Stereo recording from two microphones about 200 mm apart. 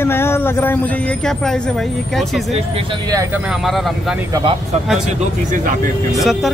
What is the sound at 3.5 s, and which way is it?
Speech, centre (ahead or behind).